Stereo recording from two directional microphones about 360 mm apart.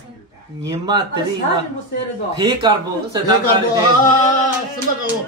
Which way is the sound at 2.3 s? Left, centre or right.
Centre.